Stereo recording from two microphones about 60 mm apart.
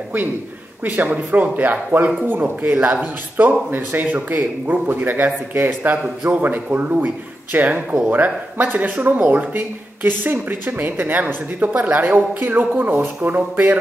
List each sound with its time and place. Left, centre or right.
0.8 s speech: right